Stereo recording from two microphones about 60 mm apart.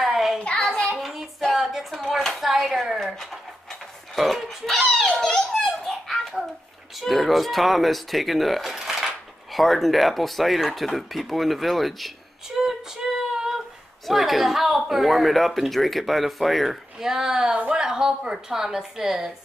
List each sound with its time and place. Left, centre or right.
0.0 s a sound: centre
0.4 s child singing: centre
0.9 s child singing: centre
1.5 s speech: centre
4.1 s dog: centre
5.2 s children playing: centre
7.0 s speech: centre
12.6 s female singing: centre
14.0 s a woman's voice: centre